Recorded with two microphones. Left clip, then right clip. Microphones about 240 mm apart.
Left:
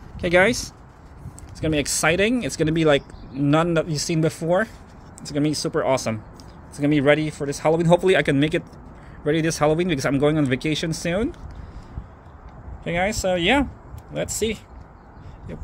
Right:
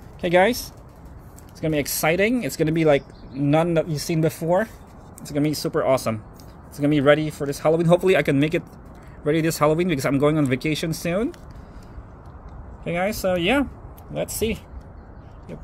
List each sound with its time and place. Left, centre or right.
0.2 s speech: centre
12.8 s speech: centre
14.4 s speech: left